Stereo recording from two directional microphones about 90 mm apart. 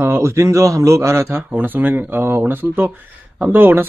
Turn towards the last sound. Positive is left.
turn(degrees=-20)  # may be behind; listen again after turning